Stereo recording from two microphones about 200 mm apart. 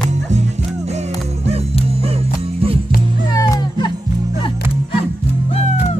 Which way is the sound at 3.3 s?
20° left (ahead or behind).